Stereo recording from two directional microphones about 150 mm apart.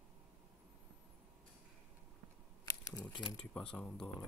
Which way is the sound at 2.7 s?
20° left (ahead or behind).